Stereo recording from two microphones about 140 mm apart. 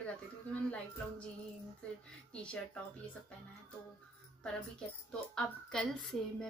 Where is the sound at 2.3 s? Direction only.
10° left (ahead or behind).